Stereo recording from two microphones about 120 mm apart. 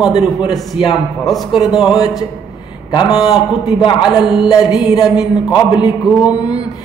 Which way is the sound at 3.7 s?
40° left (ahead or behind).